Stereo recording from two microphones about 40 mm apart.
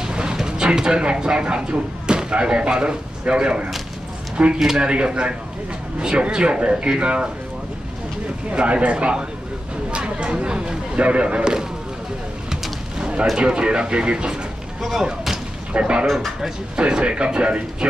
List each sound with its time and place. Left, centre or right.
0.1 s a sound: right
0.4 s speech: right
4.6 s speech: centre
4.8 s speech: right
8.5 s speech: right
13.0 s a sound: right
13.4 s speech: right
14.8 s speech: centre
15.8 s speech: right